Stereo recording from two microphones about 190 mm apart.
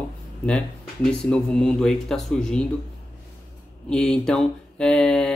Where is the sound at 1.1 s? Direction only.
5° left (ahead or behind).